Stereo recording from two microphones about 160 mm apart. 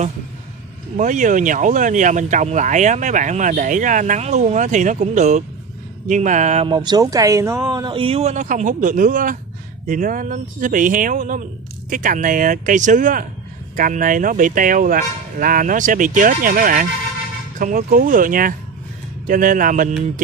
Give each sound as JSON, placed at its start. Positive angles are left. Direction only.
{"t": 0.9, "sound": "speech", "side_deg": -50}
{"t": 6.7, "sound": "speech", "side_deg": -25}